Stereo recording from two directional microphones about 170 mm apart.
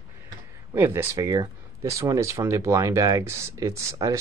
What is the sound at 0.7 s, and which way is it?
Speech, 15° right (ahead or behind).